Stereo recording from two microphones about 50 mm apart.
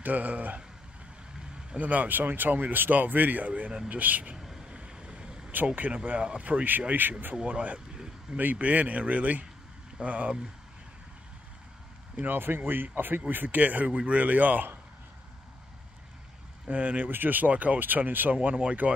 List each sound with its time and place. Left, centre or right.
0.0 s speech: right
1.8 s speech: right
4.6 s vehicle: centre
5.8 s speech: right
7.3 s speech: right
12.2 s speech: right
16.6 s speech: right
17.1 s speech: right
18.3 s speech: right